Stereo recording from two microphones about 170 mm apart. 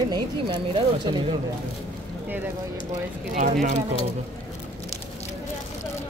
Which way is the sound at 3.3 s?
50° right (ahead or behind).